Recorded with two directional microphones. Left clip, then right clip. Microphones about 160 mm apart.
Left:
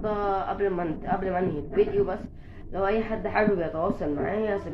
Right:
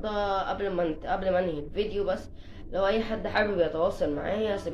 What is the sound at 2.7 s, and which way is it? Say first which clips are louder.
Speech: even; 30° right (ahead or behind).